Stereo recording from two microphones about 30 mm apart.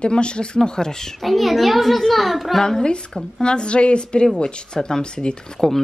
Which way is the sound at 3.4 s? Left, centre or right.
Left.